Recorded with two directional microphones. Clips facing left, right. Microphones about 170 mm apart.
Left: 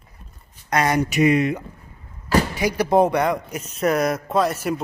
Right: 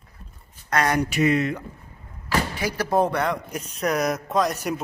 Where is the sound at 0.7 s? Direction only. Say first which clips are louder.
Left 2 dB; 10° left (ahead or behind).